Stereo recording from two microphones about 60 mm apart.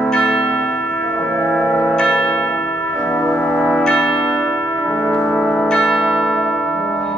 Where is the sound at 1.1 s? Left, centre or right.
Left.